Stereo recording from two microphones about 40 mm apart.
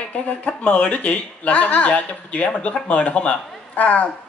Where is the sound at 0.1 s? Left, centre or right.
Left.